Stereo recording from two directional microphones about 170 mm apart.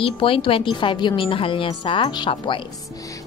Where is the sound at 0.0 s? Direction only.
30° left (ahead or behind).